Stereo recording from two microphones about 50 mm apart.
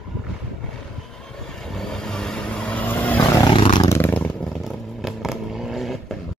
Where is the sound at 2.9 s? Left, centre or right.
Left.